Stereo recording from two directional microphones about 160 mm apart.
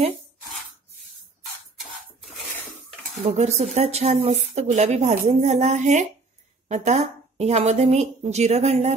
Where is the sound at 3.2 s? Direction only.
40° right (ahead or behind).